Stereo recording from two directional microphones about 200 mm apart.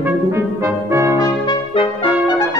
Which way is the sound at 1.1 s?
20° left (ahead or behind).